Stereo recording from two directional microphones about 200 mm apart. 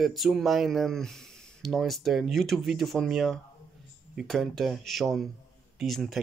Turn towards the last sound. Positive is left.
turn(degrees=0)  # may be behind; listen again after turning